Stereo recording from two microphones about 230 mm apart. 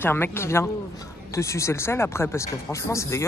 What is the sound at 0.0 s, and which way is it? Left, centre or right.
Speech, centre.